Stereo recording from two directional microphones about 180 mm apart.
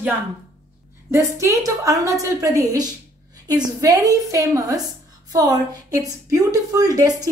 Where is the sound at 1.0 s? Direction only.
15° right (ahead or behind).